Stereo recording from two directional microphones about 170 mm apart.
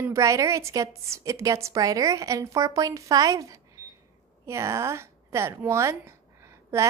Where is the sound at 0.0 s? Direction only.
15° right (ahead or behind).